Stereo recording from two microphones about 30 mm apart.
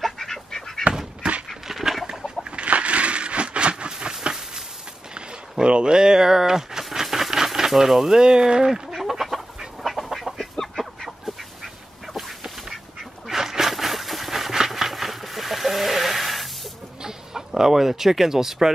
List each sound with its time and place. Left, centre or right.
0.0 s duck: centre
1.2 s dog: right
1.7 s duck: centre
2.5 s a sound: right
4.1 s a sound: right
5.1 s a sound: right
5.9 s speech: right
6.9 s a sound: centre
8.2 s speech: right
8.9 s duck: centre
13.3 s dog: centre
14.9 s chicken: centre
17.6 s speech: centre